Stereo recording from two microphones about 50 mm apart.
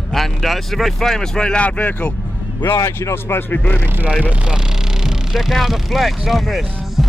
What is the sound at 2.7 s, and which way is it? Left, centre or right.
Speech, left.